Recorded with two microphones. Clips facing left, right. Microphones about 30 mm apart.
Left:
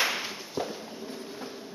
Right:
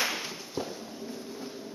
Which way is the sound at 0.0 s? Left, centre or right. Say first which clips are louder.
Left 3 dB; centre.